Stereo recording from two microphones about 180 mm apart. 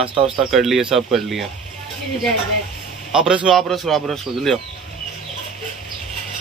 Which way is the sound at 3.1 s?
5° right (ahead or behind).